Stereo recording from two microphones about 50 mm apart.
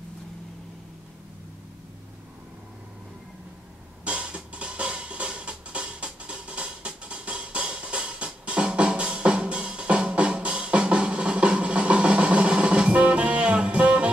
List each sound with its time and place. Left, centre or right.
4.0 s music: right